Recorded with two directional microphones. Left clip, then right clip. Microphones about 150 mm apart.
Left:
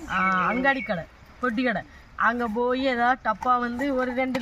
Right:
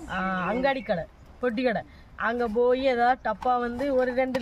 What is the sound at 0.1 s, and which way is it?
Speech, 35° right (ahead or behind).